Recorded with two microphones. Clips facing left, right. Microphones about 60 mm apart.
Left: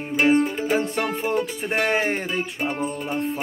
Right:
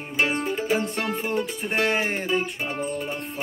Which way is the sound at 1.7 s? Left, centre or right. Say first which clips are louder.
Left 2 dB; left.